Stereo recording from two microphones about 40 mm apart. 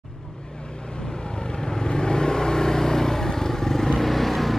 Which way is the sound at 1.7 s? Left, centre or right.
Centre.